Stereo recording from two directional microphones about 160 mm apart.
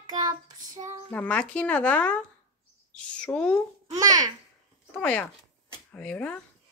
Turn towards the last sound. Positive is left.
turn(degrees=5)  # may be behind; listen again after turning